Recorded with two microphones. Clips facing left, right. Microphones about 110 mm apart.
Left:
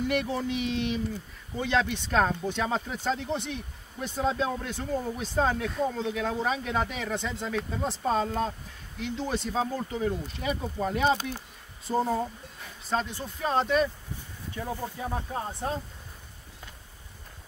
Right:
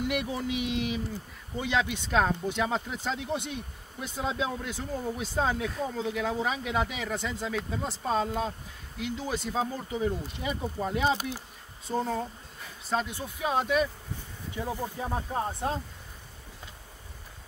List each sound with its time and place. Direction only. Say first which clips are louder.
0.1 s speech: left 2 dB; 10° right (ahead or behind)
11.9 s speech: left 3 dB; 5° left (ahead or behind)
12.9 s speech: left 1 dB; 5° right (ahead or behind)
15.0 s speech: right 2 dB; 20° right (ahead or behind)